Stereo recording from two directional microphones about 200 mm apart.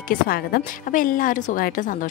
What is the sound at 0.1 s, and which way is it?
A woman's voice, 45° left (ahead or behind).